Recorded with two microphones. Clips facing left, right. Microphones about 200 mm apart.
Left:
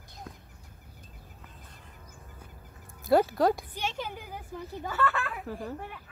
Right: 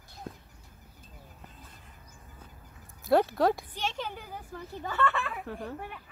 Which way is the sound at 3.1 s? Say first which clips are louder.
Left 1 dB; centre (ahead or behind).